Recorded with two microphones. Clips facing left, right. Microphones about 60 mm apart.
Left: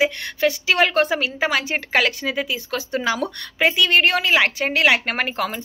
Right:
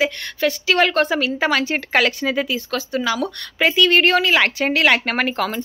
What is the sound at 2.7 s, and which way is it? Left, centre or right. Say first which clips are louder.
Speech: right 1 dB; left.